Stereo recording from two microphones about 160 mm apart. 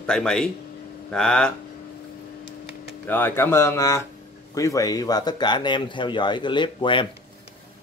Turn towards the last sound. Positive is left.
turn(degrees=30)  # may be behind; listen again after turning